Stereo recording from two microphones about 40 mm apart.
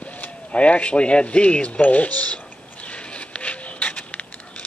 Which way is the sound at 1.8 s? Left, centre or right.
Left.